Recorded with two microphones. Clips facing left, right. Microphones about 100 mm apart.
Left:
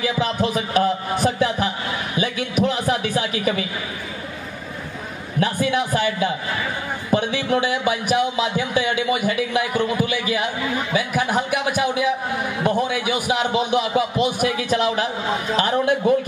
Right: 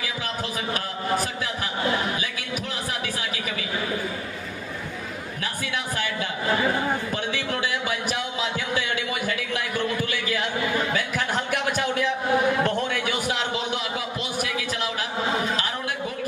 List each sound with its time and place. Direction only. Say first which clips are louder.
0.2 s a man's voice: left 8 dB; 20° left (ahead or behind)
2.1 s a sound: left 9 dB; 25° left (ahead or behind)
5.4 s a man's voice: left 11 dB; 20° left (ahead or behind)